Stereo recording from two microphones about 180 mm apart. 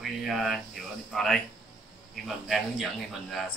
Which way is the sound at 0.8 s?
Centre (ahead or behind).